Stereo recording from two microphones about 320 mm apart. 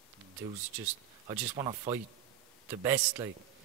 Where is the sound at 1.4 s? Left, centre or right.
Centre.